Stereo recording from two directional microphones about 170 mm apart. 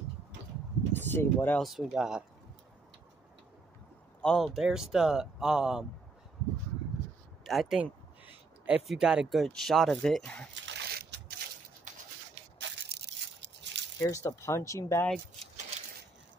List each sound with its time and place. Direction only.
0.9 s speech: 10° left (ahead or behind)
1.6 s speech: centre (ahead or behind)
4.2 s speech: centre (ahead or behind)
7.4 s speech: centre (ahead or behind)
10.5 s a sound: 90° right; by 11.3 s 65° right (ahead or behind)
12.5 s crushing: 90° right
13.9 s speech: 15° left (ahead or behind)